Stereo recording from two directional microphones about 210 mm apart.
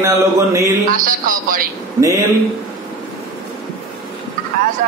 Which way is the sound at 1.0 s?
45° right (ahead or behind).